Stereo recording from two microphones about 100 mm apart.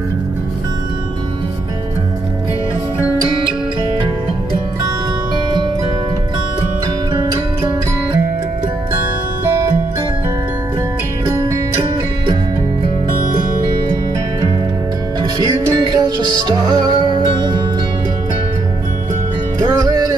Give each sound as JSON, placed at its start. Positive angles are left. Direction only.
{"t": 15.3, "sound": "music", "side_deg": -40}
{"t": 19.6, "sound": "music", "side_deg": -40}